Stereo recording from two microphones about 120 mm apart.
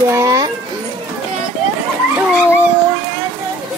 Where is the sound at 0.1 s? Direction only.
25° right (ahead or behind).